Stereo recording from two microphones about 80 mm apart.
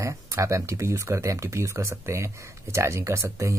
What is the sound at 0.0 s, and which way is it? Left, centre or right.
Speech, right.